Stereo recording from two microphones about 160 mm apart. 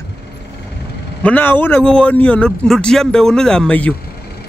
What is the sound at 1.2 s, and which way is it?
A man's voice, 10° left (ahead or behind).